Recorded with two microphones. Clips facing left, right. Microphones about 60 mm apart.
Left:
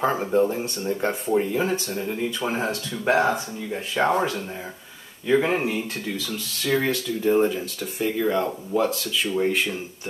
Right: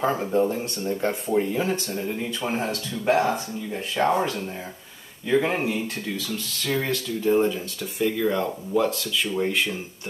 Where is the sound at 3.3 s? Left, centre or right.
Centre.